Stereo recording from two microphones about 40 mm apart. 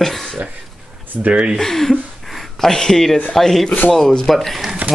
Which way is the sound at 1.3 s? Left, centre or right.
Right.